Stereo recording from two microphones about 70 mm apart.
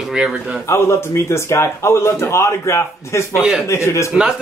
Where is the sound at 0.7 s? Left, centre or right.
Left.